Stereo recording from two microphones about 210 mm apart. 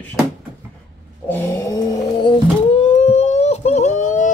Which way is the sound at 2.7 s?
30° left (ahead or behind).